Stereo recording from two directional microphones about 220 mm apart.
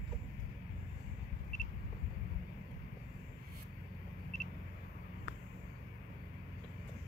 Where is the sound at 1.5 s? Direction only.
35° right (ahead or behind).